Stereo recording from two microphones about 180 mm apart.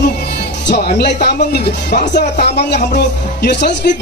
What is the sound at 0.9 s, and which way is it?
Speech, 65° left (ahead or behind).